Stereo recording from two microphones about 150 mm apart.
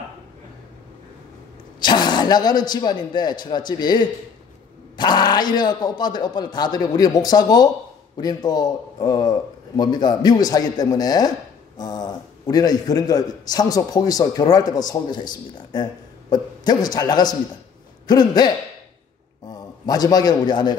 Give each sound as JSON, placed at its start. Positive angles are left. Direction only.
{"t": 1.8, "sound": "a man's voice", "side_deg": 30}